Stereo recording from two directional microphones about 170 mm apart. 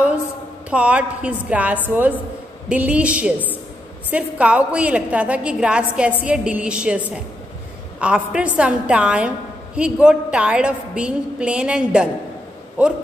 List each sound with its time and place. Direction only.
0.7 s a woman's voice: 5° right (ahead or behind)